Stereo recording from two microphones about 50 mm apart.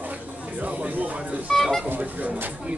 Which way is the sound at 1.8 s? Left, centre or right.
Right.